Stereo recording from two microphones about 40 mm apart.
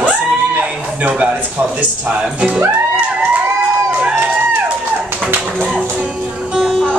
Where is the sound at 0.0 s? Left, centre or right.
Right.